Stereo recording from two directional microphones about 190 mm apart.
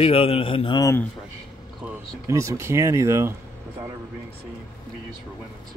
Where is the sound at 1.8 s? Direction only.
15° right (ahead or behind).